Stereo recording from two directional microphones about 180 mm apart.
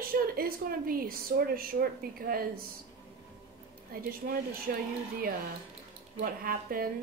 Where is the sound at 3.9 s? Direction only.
55° right (ahead or behind).